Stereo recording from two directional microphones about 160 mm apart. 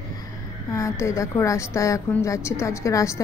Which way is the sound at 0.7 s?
20° left (ahead or behind).